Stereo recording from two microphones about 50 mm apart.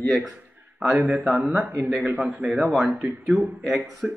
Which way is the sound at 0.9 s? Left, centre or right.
Right.